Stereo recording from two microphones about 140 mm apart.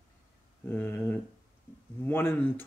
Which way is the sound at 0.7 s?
15° left (ahead or behind).